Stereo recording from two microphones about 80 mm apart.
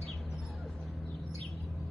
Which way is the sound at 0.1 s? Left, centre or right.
Centre.